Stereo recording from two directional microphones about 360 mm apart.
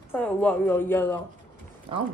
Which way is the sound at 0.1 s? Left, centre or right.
Centre.